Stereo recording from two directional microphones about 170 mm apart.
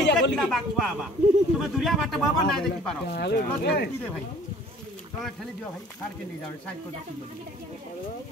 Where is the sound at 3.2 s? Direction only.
75° left (ahead or behind).